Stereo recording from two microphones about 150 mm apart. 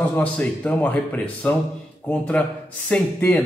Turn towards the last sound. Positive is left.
turn(degrees=10)  # may be behind; listen again after turning